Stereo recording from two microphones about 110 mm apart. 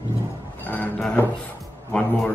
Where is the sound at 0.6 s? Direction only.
15° left (ahead or behind).